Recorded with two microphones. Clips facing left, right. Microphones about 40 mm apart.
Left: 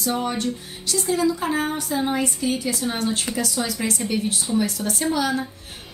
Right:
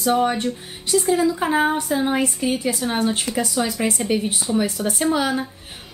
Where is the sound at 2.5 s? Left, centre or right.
Right.